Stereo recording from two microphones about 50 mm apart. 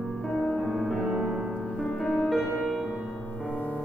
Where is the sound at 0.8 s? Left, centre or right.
Centre.